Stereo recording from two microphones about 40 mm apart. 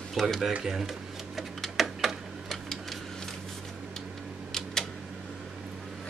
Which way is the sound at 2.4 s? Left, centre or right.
Centre.